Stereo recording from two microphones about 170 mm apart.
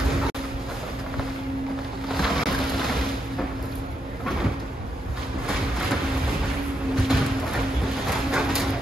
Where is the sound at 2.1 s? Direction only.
Centre (ahead or behind).